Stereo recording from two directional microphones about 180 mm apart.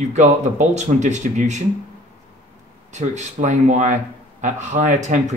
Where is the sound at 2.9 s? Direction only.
40° right (ahead or behind).